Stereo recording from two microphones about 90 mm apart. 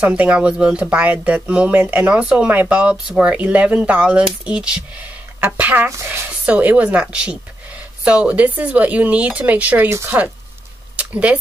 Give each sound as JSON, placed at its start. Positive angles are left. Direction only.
{"t": 0.0, "sound": "speech", "side_deg": -15}
{"t": 6.2, "sound": "speech", "side_deg": -15}
{"t": 9.8, "sound": "speech", "side_deg": -30}
{"t": 11.0, "sound": "speech", "side_deg": -15}